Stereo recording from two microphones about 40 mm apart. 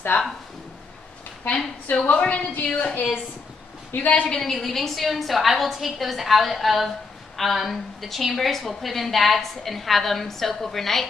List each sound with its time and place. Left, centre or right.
2.0 s a woman's voice: left
4.4 s a woman's voice: centre